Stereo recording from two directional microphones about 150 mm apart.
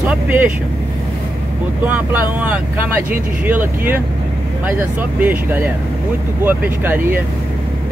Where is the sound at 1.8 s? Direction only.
10° right (ahead or behind).